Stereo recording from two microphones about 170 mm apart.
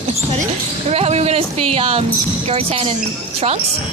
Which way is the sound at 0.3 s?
40° right (ahead or behind).